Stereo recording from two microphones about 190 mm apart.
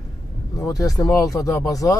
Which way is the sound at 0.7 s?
20° left (ahead or behind).